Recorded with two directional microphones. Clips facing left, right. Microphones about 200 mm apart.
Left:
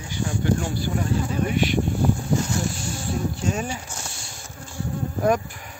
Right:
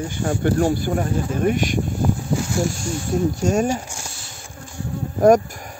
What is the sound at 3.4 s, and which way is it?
Speech, 45° right (ahead or behind).